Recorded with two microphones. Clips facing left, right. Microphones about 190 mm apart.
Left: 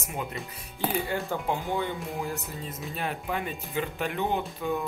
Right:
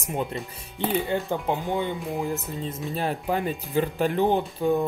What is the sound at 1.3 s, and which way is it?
Speech, 20° right (ahead or behind).